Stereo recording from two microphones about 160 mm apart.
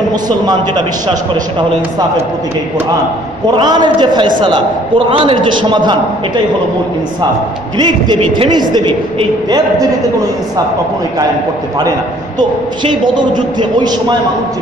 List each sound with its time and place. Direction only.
3.5 s a man's voice: 25° right (ahead or behind)
7.7 s a man's voice: 25° right (ahead or behind)
12.4 s a man's voice: 30° right (ahead or behind)